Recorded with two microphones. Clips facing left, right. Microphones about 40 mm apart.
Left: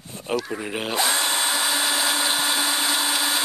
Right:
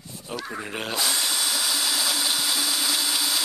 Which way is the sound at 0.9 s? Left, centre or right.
Left.